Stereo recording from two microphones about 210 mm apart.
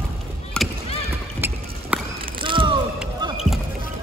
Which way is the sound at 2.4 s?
25° right (ahead or behind).